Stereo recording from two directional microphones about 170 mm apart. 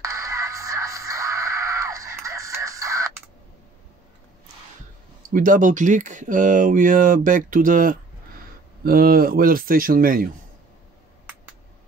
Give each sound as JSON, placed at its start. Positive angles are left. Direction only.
{"t": 0.0, "sound": "music", "side_deg": -20}
{"t": 5.3, "sound": "speech", "side_deg": -50}